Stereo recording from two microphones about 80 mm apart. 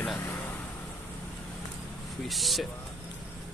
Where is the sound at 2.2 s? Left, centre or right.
Centre.